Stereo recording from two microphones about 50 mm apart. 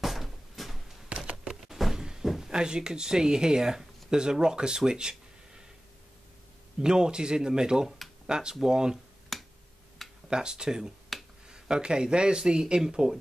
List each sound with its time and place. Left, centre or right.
0.0 s door: centre
1.0 s typewriter: right
1.3 s a sound: centre
2.5 s speech: centre
6.8 s speech: centre
9.3 s finger snapping: centre
10.0 s a sound: centre
10.3 s speech: centre
11.1 s finger snapping: centre
11.4 s speech: centre